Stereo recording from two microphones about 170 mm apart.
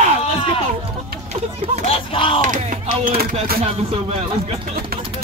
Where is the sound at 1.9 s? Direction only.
30° left (ahead or behind).